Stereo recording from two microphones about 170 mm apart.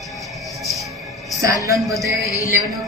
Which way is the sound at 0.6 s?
Centre (ahead or behind).